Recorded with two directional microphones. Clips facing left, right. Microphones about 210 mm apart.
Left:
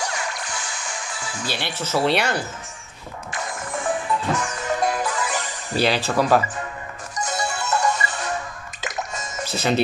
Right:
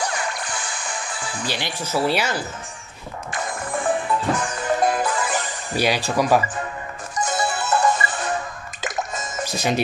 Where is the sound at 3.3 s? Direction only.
55° right (ahead or behind).